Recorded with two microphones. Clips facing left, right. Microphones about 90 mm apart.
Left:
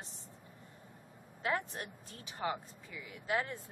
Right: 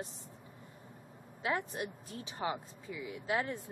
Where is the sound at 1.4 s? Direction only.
10° right (ahead or behind).